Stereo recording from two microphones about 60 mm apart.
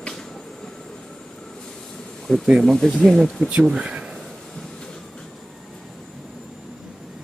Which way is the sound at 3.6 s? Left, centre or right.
Centre.